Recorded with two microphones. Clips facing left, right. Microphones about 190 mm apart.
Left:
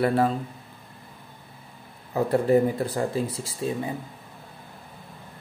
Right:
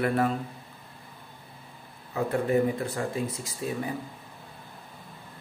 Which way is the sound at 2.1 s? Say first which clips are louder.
Left 5 dB; 35° left (ahead or behind).